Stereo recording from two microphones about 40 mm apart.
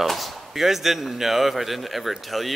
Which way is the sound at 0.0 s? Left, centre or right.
Centre.